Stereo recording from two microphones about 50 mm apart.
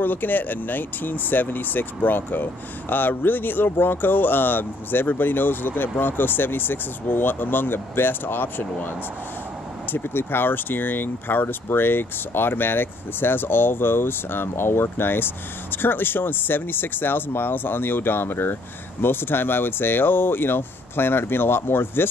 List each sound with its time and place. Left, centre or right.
0.0 s speech: left
9.9 s speech: left